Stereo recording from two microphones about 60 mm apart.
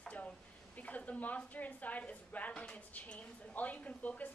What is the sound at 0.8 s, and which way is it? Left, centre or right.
A woman's voice, left.